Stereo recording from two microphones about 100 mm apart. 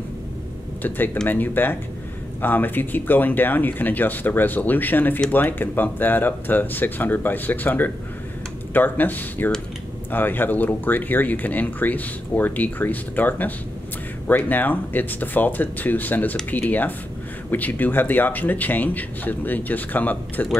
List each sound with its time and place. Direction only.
0.8 s speech: 20° left (ahead or behind)